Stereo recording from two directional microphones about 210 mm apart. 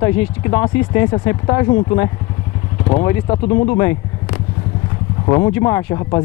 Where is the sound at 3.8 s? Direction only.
15° left (ahead or behind).